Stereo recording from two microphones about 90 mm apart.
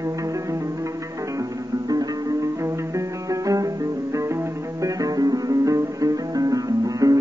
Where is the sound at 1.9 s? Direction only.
45° right (ahead or behind).